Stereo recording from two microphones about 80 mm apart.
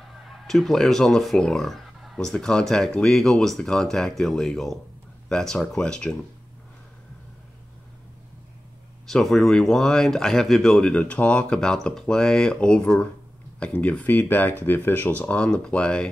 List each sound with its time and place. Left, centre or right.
0.0 s speech: centre
9.1 s speech: centre